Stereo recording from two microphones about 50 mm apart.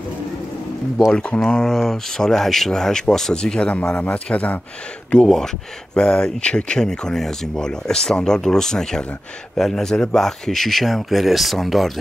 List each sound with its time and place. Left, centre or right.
1.1 s a man's voice: left
1.4 s speech: centre
3.9 s a man's voice: left; by 11.9 s centre